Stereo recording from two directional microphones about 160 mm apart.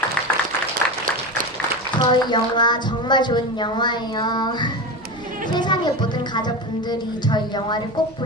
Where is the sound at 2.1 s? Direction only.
30° left (ahead or behind).